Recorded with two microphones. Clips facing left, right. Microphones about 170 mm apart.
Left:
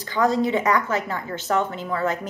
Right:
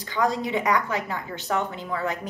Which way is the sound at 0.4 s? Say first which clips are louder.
Left 4 dB; 15° right (ahead or behind).